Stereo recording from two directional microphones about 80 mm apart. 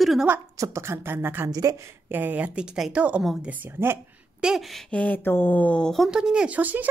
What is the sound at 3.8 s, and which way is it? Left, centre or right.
Speech, right.